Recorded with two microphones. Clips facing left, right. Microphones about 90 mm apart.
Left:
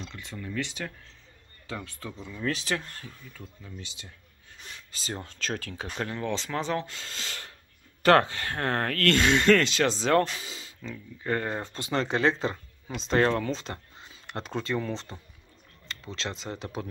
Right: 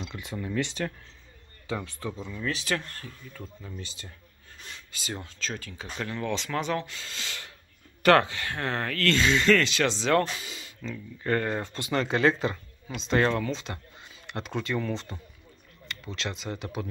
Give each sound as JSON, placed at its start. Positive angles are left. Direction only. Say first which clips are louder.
{"t": 0.0, "sound": "speech", "louder": "right 4 dB", "side_deg": -15}
{"t": 0.6, "sound": "speech", "louder": "right 4 dB", "side_deg": 0}
{"t": 2.6, "sound": "speech", "louder": "right 1 dB", "side_deg": 15}
{"t": 4.9, "sound": "speech", "louder": "left 1 dB", "side_deg": 30}
{"t": 5.3, "sound": "speech", "louder": "left 3 dB", "side_deg": 60}
{"t": 5.9, "sound": "speech", "louder": "even", "side_deg": 30}
{"t": 10.4, "sound": "speech", "louder": "even", "side_deg": 25}
{"t": 10.8, "sound": "speech", "louder": "right 4 dB", "side_deg": 15}